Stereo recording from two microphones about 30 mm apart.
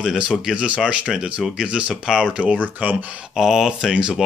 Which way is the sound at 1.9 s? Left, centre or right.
Centre.